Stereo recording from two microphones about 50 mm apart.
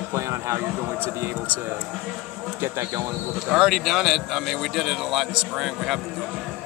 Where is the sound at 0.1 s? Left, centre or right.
Right.